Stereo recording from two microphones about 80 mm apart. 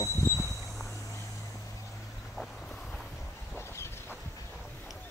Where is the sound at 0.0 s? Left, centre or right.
Left.